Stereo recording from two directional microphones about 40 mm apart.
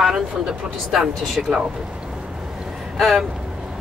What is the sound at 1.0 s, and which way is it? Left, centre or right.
Speech, centre.